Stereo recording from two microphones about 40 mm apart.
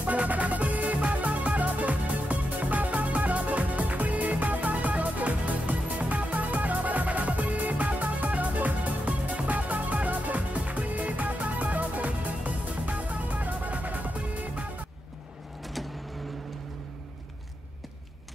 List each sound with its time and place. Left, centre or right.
0.0 s music: right